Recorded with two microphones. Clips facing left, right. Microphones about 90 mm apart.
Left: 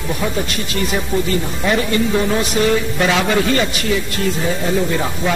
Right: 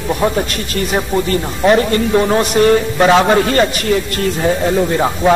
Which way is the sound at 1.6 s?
45° right (ahead or behind).